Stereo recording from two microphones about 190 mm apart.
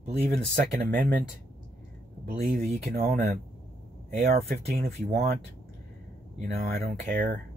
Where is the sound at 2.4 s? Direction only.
40° right (ahead or behind).